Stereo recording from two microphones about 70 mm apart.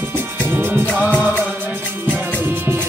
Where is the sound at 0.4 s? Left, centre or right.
Right.